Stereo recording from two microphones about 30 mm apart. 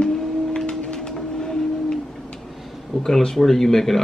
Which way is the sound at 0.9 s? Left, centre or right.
Left.